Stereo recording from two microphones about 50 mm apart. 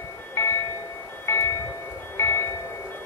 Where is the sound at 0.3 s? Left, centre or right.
Left.